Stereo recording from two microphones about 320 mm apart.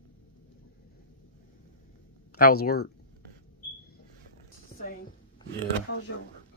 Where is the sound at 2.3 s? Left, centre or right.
Left.